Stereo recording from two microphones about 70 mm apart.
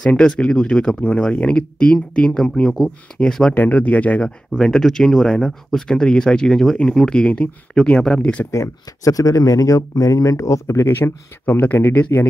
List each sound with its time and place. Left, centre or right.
0.0 s speech: centre
3.5 s speech: left
4.5 s speech: centre
8.5 s speech: left
10.9 s speech: left
12.1 s speech: left